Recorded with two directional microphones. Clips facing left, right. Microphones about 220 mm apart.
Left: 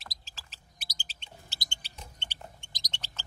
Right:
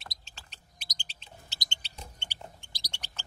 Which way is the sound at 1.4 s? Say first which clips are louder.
Even; 20° right (ahead or behind).